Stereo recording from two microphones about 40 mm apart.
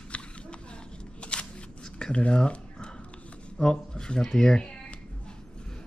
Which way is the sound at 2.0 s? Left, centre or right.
Left.